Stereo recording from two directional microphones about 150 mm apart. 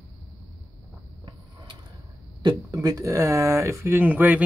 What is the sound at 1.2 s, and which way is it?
Mechanisms, 30° right (ahead or behind).